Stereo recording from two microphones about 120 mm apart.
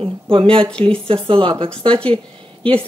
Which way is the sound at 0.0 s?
50° right (ahead or behind).